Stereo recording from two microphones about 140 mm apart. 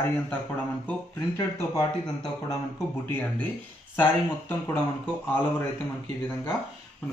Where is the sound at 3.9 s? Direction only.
15° left (ahead or behind).